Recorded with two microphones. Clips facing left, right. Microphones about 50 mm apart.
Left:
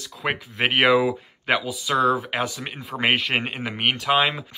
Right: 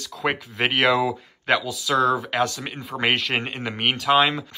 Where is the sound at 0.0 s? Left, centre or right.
Centre.